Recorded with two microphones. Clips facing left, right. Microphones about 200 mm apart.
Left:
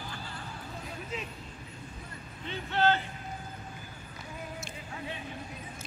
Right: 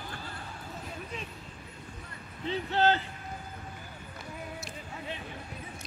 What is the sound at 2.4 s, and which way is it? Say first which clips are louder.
Speech: right 1 dB; 35° right (ahead or behind).